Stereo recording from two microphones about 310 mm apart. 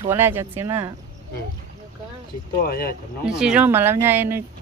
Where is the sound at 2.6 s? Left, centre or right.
Left.